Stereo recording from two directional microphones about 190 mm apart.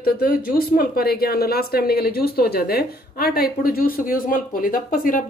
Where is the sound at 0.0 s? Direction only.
50° left (ahead or behind).